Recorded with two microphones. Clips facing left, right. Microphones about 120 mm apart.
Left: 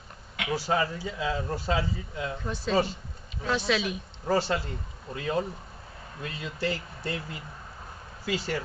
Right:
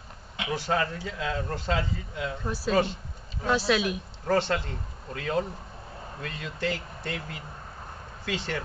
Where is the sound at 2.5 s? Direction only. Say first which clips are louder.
Right 1 dB; 5° right (ahead or behind).